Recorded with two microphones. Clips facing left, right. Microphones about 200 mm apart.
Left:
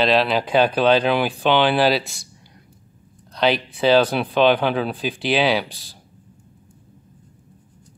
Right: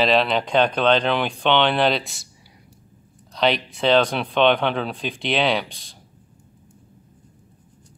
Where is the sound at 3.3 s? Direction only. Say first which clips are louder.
Left 1 dB; centre (ahead or behind).